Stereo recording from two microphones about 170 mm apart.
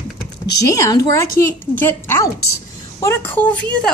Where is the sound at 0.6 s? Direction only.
20° left (ahead or behind).